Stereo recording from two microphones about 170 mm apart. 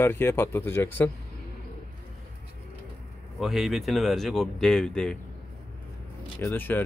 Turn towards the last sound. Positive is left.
turn(degrees=10)  # may be behind; listen again after turning